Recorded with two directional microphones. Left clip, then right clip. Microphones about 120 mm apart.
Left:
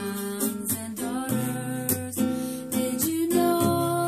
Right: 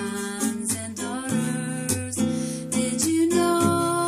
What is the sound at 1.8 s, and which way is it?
Music, 25° right (ahead or behind).